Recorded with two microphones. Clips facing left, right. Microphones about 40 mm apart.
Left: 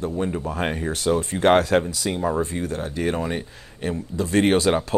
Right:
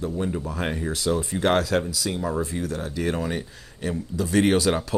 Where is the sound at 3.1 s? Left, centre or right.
Left.